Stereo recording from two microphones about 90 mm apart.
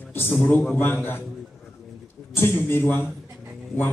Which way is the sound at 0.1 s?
25° left (ahead or behind).